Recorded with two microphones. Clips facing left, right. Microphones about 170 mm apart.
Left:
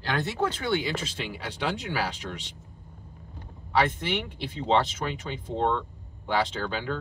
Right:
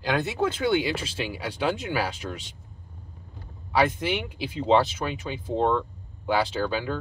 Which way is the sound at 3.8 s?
10° right (ahead or behind).